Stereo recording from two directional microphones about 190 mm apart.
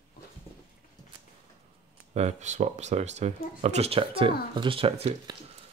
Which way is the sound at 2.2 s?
35° right (ahead or behind).